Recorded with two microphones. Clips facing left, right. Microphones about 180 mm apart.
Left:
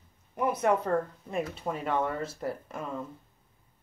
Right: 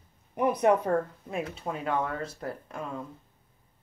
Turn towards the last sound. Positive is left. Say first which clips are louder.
# even
turn(degrees=5)  # may be behind; listen again after turning